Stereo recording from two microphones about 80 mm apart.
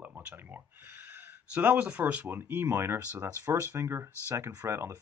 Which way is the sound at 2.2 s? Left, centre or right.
Right.